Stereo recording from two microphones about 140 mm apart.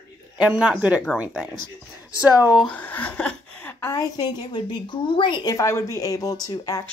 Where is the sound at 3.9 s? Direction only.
30° left (ahead or behind).